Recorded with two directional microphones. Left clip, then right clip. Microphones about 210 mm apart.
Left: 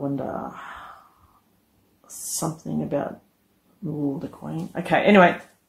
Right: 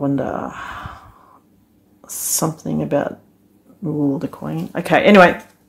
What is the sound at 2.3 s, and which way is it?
Speech, 40° right (ahead or behind).